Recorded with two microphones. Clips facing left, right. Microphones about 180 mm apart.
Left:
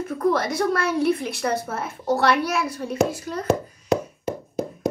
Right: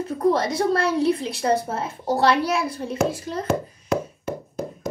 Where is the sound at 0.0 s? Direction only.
25° right (ahead or behind).